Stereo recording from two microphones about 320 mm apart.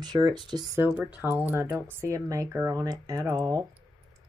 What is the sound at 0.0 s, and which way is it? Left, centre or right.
Speech, centre.